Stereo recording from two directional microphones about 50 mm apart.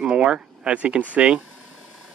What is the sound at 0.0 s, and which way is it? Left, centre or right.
Speech, centre.